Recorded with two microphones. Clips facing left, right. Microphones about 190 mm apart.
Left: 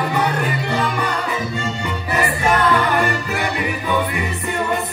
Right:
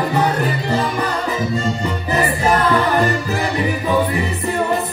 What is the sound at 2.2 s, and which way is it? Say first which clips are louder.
Music: right 1 dB; 35° right (ahead or behind).